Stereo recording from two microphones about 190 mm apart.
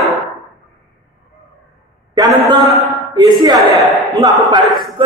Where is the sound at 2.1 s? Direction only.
20° right (ahead or behind).